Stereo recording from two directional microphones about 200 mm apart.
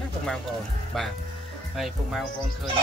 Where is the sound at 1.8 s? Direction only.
Centre (ahead or behind).